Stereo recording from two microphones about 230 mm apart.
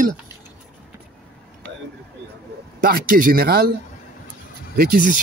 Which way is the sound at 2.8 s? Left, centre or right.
Right.